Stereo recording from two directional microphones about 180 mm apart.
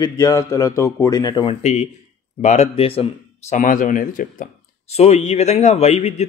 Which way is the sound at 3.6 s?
45° left (ahead or behind).